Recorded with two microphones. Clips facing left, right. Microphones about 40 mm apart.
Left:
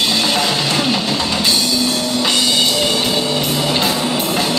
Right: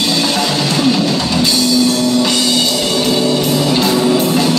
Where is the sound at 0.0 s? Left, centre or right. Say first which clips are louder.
Right 1 dB; left.